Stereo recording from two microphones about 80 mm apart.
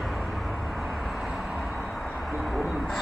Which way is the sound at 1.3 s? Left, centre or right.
Centre.